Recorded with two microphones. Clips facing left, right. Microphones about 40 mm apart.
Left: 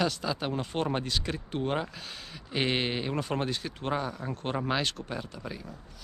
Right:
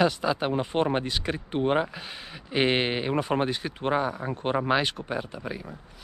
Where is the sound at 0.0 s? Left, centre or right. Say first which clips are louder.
Right 6 dB; centre.